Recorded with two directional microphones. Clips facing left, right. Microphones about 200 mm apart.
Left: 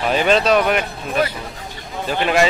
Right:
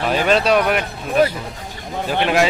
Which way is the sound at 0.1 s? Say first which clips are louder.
Left 1 dB; 5° right (ahead or behind).